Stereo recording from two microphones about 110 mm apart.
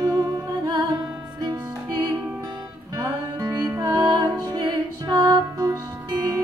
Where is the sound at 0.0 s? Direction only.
35° right (ahead or behind).